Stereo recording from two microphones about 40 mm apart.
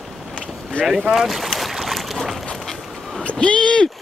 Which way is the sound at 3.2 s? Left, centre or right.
Left.